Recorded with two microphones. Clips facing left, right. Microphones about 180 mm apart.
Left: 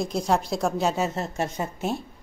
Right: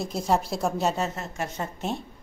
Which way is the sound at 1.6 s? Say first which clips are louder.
Left 2 dB; 5° left (ahead or behind).